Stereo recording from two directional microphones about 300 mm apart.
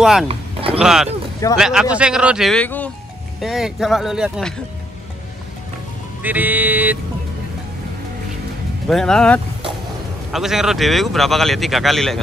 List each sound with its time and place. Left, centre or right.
0.0 s speech: centre
0.3 s a sound: centre
0.7 s speech: centre
6.2 s speech: centre
8.8 s speech: centre